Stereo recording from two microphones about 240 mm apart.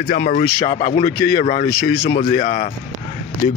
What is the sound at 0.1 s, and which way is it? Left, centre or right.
Speech, left.